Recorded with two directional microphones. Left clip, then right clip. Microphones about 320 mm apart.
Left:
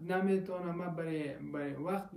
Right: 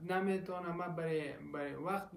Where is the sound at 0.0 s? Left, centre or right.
Centre.